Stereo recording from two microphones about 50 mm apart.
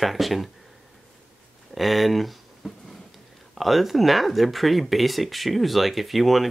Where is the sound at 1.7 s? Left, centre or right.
Centre.